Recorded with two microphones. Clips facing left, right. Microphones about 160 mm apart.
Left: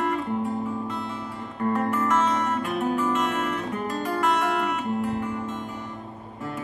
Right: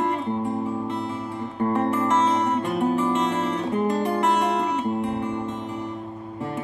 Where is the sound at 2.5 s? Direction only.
25° right (ahead or behind).